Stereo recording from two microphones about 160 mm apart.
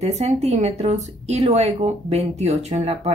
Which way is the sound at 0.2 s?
45° right (ahead or behind).